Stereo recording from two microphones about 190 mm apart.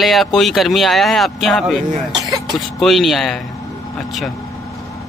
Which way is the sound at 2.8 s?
Centre (ahead or behind).